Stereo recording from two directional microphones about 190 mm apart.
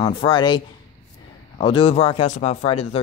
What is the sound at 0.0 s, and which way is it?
Speech, 25° left (ahead or behind).